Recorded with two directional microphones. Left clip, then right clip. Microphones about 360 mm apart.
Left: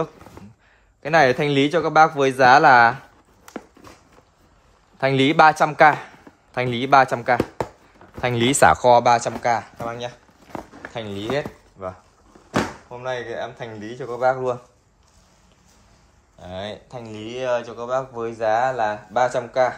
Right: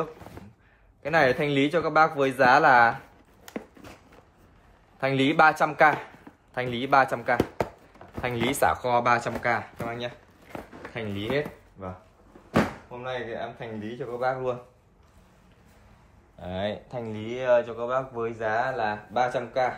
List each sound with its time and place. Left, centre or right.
1.0 s a man's voice: left
4.9 s a man's voice: left
8.8 s speech: centre
13.0 s a man's voice: left
16.3 s speech: centre